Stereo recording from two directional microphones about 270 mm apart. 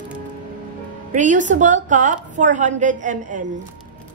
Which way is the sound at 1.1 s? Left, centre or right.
Right.